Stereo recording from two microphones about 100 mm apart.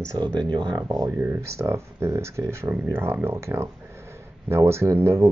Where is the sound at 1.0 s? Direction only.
25° right (ahead or behind).